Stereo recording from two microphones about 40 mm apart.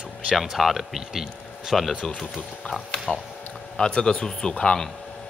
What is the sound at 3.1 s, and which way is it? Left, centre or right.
Speech, left.